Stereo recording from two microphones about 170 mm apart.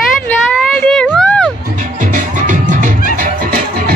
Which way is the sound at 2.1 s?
50° right (ahead or behind).